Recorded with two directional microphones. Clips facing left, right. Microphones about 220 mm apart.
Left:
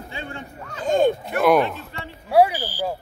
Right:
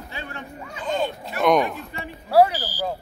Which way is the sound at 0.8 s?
45° left (ahead or behind).